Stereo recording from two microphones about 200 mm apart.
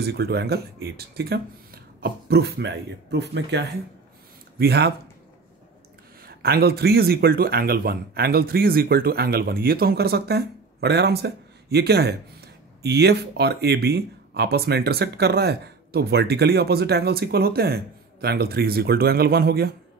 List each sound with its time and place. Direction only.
0.0 s a man's voice: 55° right (ahead or behind)
6.2 s a man's voice: 50° right (ahead or behind)